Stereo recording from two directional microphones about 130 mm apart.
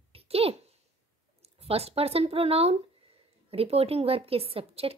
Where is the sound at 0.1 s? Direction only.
50° right (ahead or behind).